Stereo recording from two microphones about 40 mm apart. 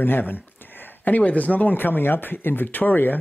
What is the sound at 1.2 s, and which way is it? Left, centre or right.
Speech, left.